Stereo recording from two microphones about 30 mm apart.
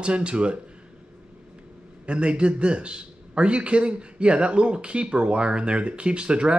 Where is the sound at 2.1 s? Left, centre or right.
Right.